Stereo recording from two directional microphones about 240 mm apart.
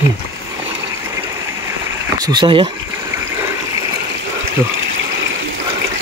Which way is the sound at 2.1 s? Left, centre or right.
Centre.